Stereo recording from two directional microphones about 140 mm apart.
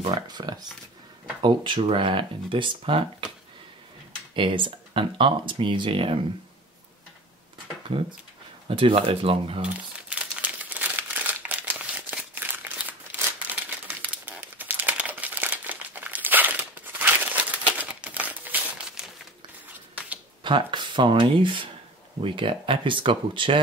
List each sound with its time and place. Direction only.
0.0 s speech: 35° right (ahead or behind)
4.4 s speech: 35° right (ahead or behind)
8.6 s speech: 40° right (ahead or behind)
9.6 s crumpling: 10° right (ahead or behind)
20.4 s speech: 35° right (ahead or behind)